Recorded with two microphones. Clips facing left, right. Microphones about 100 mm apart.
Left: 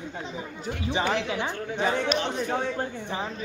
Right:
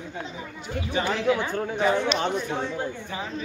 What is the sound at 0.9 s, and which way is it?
Speech, 20° left (ahead or behind).